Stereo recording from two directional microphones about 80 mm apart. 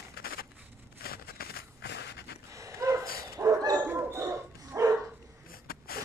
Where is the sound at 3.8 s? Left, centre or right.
Right.